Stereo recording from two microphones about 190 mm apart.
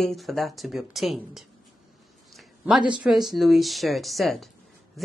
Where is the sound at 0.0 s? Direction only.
Centre (ahead or behind).